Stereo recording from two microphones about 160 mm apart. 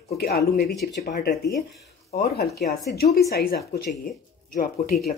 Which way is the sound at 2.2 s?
80° left.